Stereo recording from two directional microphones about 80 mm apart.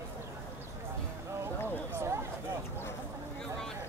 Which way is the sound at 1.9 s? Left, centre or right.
Right.